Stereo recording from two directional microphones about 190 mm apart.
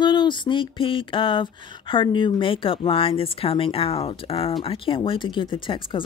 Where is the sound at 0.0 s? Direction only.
25° left (ahead or behind).